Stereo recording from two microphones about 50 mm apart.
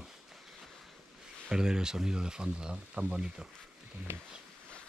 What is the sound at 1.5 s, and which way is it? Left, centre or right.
Speech, centre.